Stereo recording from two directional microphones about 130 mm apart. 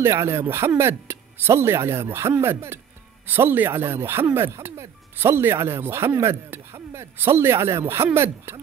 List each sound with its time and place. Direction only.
0.0 s speech: 20° right (ahead or behind)